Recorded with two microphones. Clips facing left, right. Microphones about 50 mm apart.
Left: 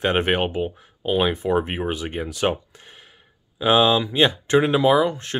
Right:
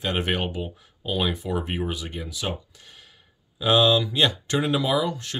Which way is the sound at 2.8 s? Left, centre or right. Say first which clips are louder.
Left 3 dB; left.